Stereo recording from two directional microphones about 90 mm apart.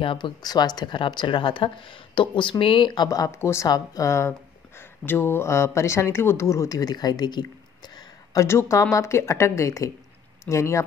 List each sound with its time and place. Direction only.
0.0 s speech: 70° left (ahead or behind)
0.4 s a woman's voice: 50° left (ahead or behind)
3.3 s speech: 30° left (ahead or behind)
3.6 s speech: 45° left (ahead or behind)
4.3 s speech: 25° left (ahead or behind); by 8.4 s 55° left (ahead or behind)
8.4 s speech: 30° left (ahead or behind)